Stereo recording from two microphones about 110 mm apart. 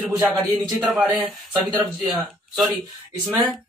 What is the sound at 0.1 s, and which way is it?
Speech, centre (ahead or behind).